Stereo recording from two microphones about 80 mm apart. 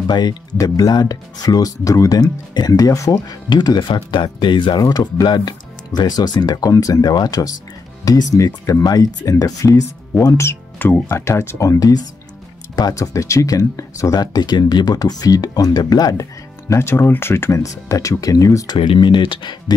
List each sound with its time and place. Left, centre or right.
0.0 s speech: left
3.4 s speech: left
4.8 s speech: left
10.2 s speech: left
11.1 s speech: left
16.6 s speech: left
18.7 s speech: left